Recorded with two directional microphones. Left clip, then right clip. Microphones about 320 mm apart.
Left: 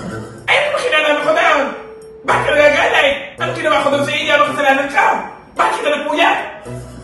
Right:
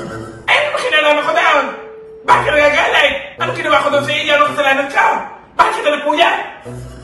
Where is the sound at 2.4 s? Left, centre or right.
Centre.